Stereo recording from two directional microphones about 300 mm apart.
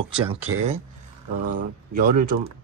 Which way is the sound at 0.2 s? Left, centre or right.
Centre.